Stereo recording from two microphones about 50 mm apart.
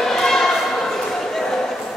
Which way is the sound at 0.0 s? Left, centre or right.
Centre.